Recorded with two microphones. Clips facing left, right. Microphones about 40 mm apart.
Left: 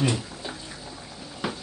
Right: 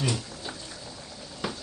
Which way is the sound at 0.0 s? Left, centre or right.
Centre.